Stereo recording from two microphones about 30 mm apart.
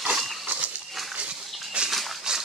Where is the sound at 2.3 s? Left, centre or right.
Right.